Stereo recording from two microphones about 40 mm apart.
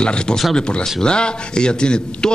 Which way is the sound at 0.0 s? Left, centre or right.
Left.